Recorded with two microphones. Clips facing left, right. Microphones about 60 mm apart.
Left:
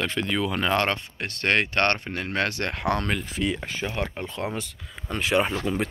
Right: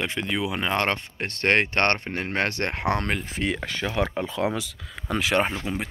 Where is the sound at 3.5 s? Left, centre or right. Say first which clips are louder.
Right 1 dB; right.